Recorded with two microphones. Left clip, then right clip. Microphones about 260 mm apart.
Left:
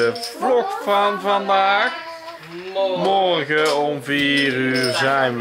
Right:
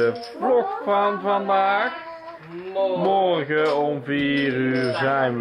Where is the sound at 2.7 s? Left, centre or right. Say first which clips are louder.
Left 2 dB; centre.